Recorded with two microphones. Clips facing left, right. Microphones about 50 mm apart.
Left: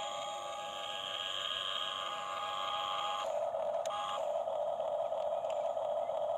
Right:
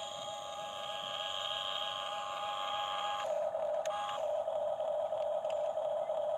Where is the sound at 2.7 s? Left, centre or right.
Centre.